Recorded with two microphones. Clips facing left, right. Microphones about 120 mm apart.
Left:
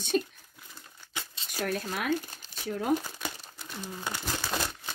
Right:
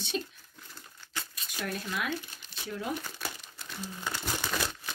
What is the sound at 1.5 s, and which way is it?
Speech, 40° left (ahead or behind).